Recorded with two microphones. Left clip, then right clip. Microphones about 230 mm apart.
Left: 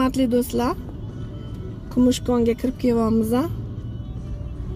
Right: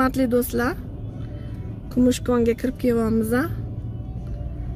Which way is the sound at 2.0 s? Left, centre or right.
Right.